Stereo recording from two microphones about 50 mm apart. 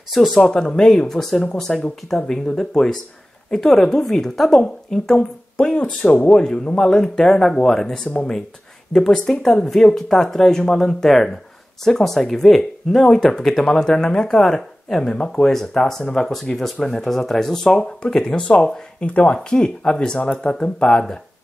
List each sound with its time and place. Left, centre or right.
0.1 s speech: centre
0.4 s speech: centre
9.4 s speech: centre
18.0 s speech: centre
19.5 s speech: centre